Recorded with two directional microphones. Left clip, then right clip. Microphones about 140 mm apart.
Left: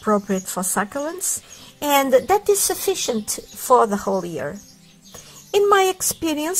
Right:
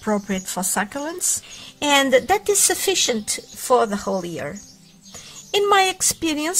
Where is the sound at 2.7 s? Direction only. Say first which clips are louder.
Right 2 dB; 25° right (ahead or behind).